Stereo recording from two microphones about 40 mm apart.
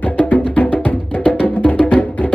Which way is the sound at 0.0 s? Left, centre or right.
Left.